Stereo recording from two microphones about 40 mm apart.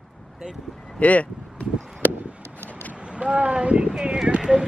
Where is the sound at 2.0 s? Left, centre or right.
Right.